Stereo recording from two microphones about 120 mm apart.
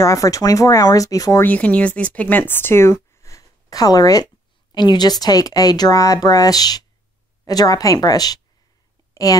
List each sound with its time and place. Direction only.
0.0 s speech: 30° left (ahead or behind)
1.4 s speech: 15° left (ahead or behind); by 8.4 s 30° left (ahead or behind)
9.1 s whispering: 30° left (ahead or behind)